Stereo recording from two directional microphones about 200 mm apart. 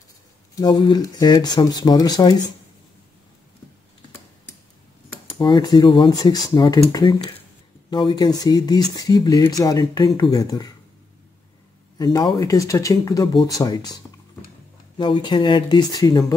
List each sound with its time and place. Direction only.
0.6 s speech: 20° left (ahead or behind)
5.2 s speech: 20° left (ahead or behind)
12.0 s speech: 20° left (ahead or behind)
15.0 s speech: 25° left (ahead or behind)